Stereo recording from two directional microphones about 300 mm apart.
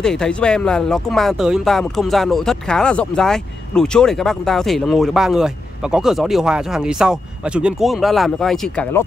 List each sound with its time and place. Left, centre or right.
0.0 s speech: centre